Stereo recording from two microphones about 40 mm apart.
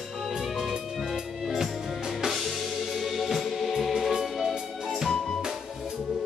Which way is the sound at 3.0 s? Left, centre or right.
Centre.